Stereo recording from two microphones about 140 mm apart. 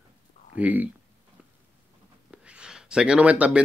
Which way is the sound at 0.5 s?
10° right (ahead or behind).